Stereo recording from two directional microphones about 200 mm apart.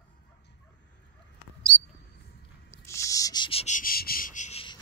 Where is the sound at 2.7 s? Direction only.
15° left (ahead or behind).